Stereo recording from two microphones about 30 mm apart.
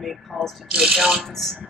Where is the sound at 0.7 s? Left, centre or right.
Right.